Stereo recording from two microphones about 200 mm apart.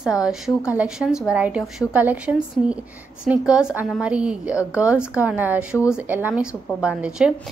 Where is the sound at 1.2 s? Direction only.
5° right (ahead or behind).